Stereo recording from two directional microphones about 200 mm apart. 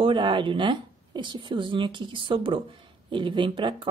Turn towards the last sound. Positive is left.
turn(degrees=-25)  # may be behind; listen again after turning